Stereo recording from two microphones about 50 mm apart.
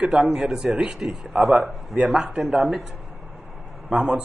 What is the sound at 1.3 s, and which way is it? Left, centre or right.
A man's voice, right.